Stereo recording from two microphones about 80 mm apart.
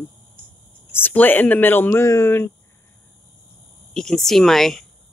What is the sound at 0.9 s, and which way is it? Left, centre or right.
Speech, left.